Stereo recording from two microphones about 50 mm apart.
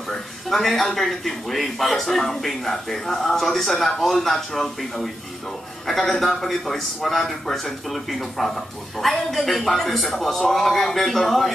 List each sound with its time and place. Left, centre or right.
0.1 s a man's voice: centre